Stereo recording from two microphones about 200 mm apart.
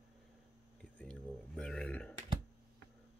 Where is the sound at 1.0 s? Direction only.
5° left (ahead or behind).